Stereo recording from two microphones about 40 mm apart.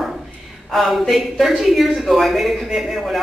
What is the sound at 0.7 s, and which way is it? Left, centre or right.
A man's voice, centre.